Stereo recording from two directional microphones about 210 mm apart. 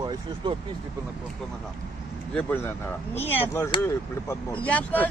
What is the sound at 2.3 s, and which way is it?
Speech, 10° left (ahead or behind).